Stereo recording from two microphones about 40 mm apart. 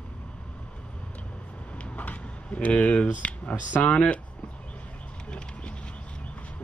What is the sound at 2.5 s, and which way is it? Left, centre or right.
Speech, left.